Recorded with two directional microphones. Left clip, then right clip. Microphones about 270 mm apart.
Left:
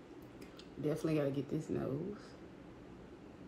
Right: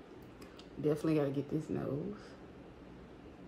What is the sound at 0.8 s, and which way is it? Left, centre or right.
Speech, centre.